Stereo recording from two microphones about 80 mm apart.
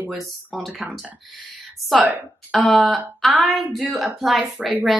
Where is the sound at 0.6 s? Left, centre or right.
Centre.